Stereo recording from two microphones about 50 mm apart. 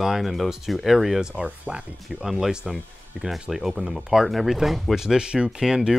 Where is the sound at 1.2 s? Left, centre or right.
Centre.